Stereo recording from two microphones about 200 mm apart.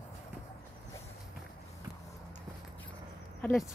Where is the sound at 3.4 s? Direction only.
Centre (ahead or behind).